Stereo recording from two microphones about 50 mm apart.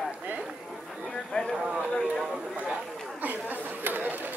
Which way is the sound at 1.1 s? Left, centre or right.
Centre.